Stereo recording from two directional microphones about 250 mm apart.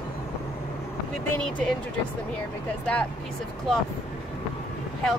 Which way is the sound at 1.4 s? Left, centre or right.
Centre.